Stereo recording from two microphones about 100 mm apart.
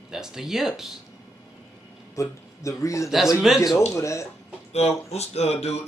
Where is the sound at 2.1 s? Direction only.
30° left (ahead or behind).